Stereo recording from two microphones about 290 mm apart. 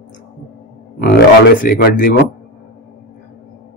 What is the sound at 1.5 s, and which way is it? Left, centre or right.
Speech, left.